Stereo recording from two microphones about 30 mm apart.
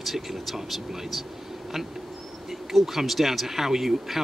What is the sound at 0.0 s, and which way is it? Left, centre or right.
Speech, centre.